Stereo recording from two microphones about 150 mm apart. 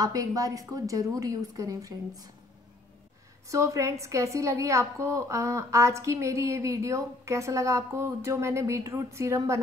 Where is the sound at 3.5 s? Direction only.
20° right (ahead or behind).